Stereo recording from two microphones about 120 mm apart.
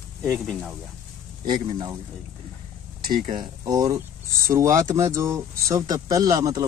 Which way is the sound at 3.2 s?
40° right (ahead or behind).